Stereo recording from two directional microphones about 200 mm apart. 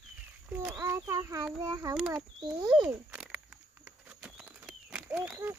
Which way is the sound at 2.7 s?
5° right (ahead or behind).